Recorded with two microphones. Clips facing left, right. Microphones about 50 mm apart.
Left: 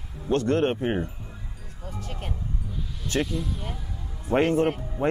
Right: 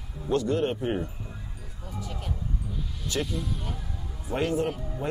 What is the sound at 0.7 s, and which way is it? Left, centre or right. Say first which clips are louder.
Speech: left 2 dB; left.